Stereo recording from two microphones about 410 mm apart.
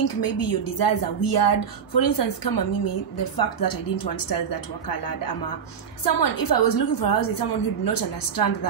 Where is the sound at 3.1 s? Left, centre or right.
Left.